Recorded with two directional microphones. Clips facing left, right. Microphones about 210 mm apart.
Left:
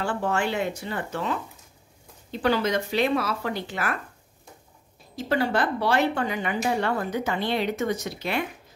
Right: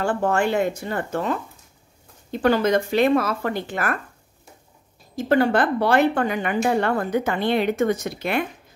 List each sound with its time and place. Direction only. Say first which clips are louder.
0.0 s speech: right 5 dB; 50° right (ahead or behind)
5.1 s speech: right 6 dB; 55° right (ahead or behind)